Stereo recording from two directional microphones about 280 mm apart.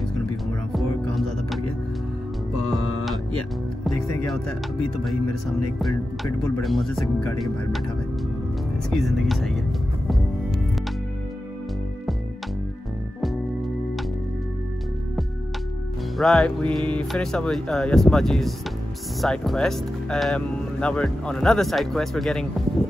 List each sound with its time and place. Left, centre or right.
0.7 s music: centre
3.8 s speech: centre
5.8 s speech: centre
8.9 s speech: centre
16.2 s speech: centre